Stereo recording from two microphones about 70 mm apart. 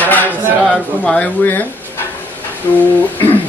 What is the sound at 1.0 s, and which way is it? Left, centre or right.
Speech, centre.